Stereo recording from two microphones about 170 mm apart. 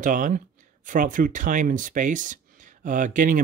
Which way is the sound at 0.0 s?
50° right (ahead or behind).